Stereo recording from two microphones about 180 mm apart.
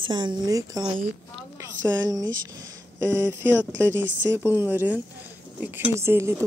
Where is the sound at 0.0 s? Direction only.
25° right (ahead or behind).